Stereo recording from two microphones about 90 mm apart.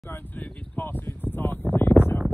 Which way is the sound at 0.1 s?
20° left (ahead or behind).